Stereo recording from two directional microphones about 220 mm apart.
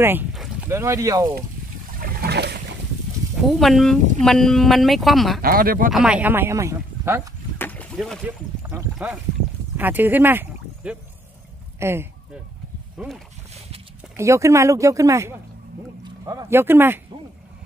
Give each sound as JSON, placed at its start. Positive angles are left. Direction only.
{"t": 0.0, "sound": "speech", "side_deg": -10}
{"t": 0.7, "sound": "speech", "side_deg": -10}
{"t": 2.0, "sound": "a sound", "side_deg": -40}
{"t": 3.3, "sound": "speech", "side_deg": 0}
{"t": 5.4, "sound": "speech", "side_deg": -40}
{"t": 5.9, "sound": "speech", "side_deg": -5}
{"t": 7.5, "sound": "rowboat", "side_deg": 5}
{"t": 8.6, "sound": "speech", "side_deg": -5}
{"t": 14.1, "sound": "speech", "side_deg": -15}